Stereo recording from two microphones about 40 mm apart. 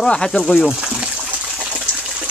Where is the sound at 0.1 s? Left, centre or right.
Centre.